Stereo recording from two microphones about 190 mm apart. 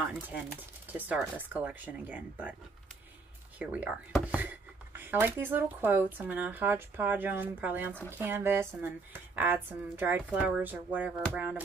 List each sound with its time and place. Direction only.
0.9 s speech: 10° right (ahead or behind)
3.5 s speech: 5° right (ahead or behind)